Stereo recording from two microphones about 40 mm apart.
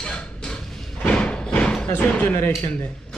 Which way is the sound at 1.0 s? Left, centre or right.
Left.